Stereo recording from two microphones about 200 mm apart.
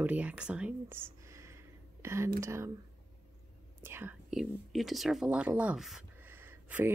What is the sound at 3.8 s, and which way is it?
Speech, 10° right (ahead or behind).